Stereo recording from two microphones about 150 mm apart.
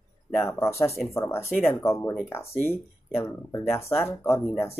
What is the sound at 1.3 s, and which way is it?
Speech, 15° left (ahead or behind).